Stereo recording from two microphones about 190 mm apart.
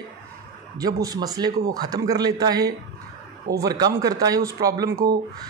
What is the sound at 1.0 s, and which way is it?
Speech, 20° right (ahead or behind).